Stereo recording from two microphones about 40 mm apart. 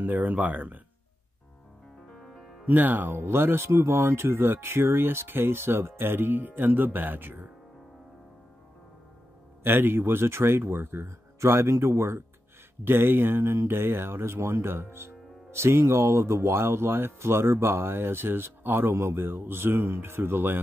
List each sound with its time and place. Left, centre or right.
0.0 s speech: right
2.1 s music: centre
2.6 s speech: right
9.6 s speech: right
12.8 s speech: right